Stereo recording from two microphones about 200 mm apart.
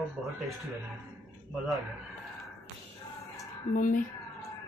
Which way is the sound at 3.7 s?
40° left (ahead or behind).